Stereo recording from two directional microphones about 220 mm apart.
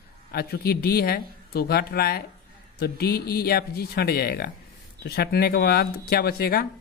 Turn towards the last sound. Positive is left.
turn(degrees=45)  # may be behind; listen again after turning